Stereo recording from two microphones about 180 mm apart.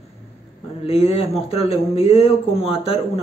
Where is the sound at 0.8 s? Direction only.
35° left (ahead or behind).